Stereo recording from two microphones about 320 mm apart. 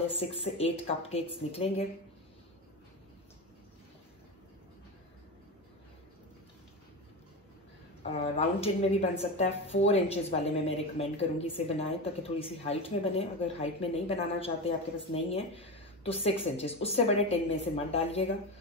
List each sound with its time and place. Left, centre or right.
0.1 s speech: centre
8.0 s speech: centre